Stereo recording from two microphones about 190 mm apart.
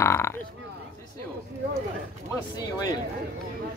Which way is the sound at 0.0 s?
15° left (ahead or behind).